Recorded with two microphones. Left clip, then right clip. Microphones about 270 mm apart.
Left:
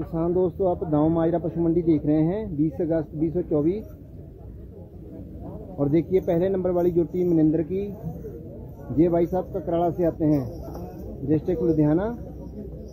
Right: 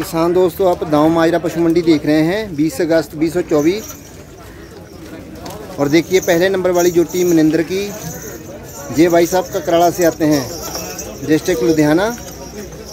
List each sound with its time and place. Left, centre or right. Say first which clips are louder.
0.1 s speech: right 10 dB; centre
0.9 s a man's voice: right 10 dB; right
1.2 s speech: right 10 dB; centre
5.8 s speech: right 9 dB; centre
8.9 s speech: right 10 dB; centre